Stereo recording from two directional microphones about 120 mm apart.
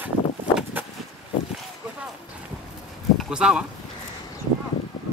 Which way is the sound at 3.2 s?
5° right (ahead or behind).